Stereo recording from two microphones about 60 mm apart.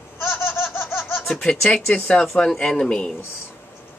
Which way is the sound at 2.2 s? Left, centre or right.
Centre.